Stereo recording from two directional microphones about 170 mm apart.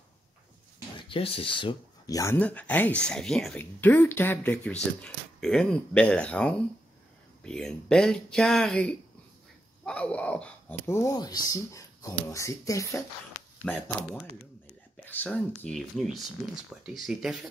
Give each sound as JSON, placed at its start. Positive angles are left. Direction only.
{"t": 1.0, "sound": "speech", "side_deg": 30}
{"t": 13.7, "sound": "speech", "side_deg": 10}